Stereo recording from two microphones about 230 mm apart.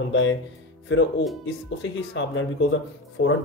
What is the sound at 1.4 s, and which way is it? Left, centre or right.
Speech, left.